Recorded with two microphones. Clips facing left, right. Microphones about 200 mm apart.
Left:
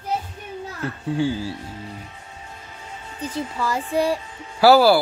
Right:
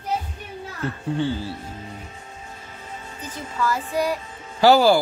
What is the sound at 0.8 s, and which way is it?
Speech, 10° left (ahead or behind).